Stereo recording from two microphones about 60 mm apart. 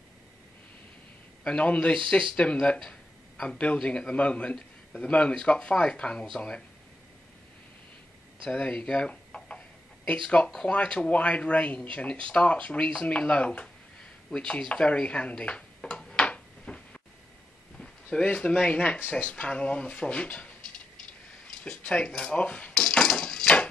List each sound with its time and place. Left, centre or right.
1.6 s a man's voice: centre
8.5 s speech: centre
14.3 s a sound: centre
17.7 s speech: centre
18.9 s speech: left
21.9 s a sound: centre